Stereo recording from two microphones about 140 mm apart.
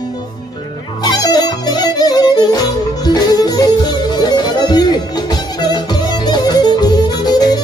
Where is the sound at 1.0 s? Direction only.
30° left (ahead or behind).